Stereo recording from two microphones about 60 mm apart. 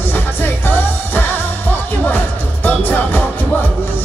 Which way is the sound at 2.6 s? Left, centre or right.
Left.